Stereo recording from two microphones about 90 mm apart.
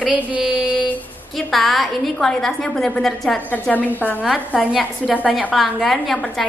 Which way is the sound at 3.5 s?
20° left (ahead or behind).